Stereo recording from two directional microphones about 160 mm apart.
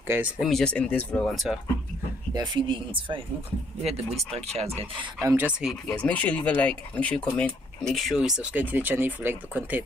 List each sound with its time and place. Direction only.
0.0 s speech: 15° right (ahead or behind)
0.4 s speech: centre (ahead or behind)
2.3 s speech: 30° right (ahead or behind)
5.2 s speech: 15° right (ahead or behind)
5.9 s speech: 10° left (ahead or behind); by 9.8 s 10° right (ahead or behind)